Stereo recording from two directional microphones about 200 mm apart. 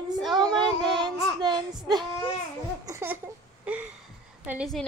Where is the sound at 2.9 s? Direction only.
15° right (ahead or behind).